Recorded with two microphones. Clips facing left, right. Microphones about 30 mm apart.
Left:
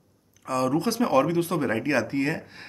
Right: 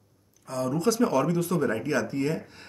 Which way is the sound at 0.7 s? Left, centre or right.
Left.